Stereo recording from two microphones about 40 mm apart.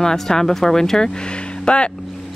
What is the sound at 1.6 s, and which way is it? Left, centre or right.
Speech, left.